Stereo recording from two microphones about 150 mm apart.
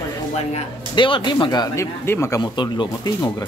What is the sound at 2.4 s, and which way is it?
Speech, 30° left (ahead or behind).